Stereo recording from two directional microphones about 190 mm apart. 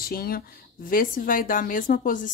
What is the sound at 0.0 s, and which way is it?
A woman's voice, 50° left (ahead or behind).